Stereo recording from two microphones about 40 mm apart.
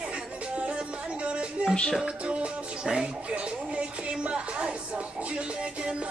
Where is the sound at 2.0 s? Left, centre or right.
Right.